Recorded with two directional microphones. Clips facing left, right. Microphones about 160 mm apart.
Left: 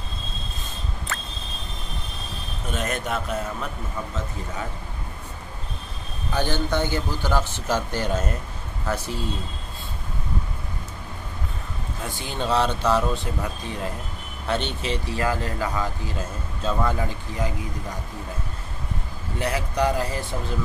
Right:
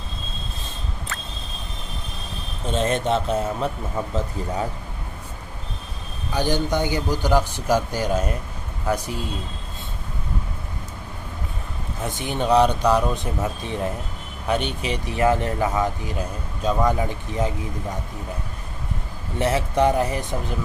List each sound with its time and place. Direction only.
2.6 s a man's voice: 25° right (ahead or behind)
6.3 s a man's voice: 15° right (ahead or behind)
12.1 s a man's voice: 20° right (ahead or behind)
19.3 s a man's voice: 25° right (ahead or behind)